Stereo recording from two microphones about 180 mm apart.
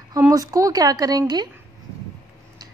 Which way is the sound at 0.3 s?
20° right (ahead or behind).